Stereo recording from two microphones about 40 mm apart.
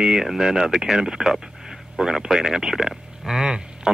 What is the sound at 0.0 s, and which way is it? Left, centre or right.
Speech, centre.